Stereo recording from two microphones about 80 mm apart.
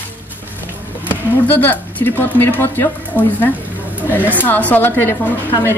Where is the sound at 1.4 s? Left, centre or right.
Left.